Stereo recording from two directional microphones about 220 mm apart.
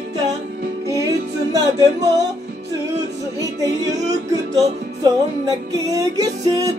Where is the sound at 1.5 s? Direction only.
15° right (ahead or behind).